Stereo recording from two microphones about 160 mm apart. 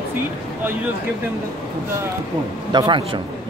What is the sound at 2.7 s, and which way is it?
Speech, 30° right (ahead or behind).